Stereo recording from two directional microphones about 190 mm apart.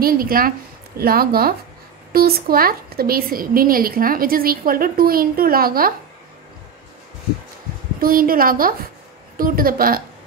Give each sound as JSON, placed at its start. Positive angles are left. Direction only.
{"t": 0.0, "sound": "speech", "side_deg": -50}
{"t": 8.0, "sound": "speech", "side_deg": -50}